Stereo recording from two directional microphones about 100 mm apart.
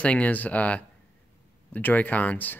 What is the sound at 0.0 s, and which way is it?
Speech, 15° left (ahead or behind).